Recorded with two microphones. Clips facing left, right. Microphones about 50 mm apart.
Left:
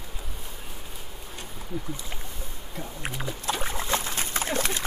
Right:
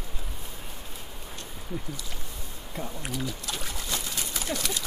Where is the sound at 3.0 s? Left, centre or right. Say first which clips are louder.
Left 6 dB; left.